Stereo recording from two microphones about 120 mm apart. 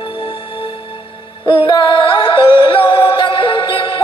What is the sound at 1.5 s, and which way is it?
Music, 45° left (ahead or behind).